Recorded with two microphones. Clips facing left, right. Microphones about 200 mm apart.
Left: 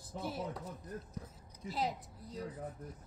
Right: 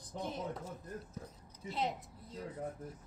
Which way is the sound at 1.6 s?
Centre (ahead or behind).